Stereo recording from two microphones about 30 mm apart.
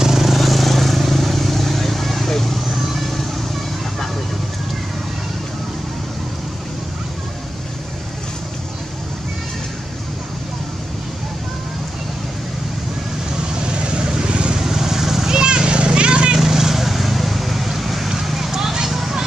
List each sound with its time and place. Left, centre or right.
0.0 s vehicle: centre
13.6 s vehicle: right
14.6 s vehicle: centre
15.3 s children playing: right
16.3 s vehicle: centre
18.2 s a sound: centre
18.5 s a sound: centre